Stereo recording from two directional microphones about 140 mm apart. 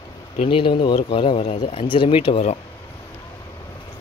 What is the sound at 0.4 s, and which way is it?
Speech, 40° left (ahead or behind).